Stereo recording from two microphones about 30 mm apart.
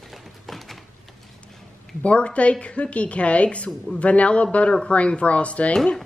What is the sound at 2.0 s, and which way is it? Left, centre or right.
A woman's voice, left.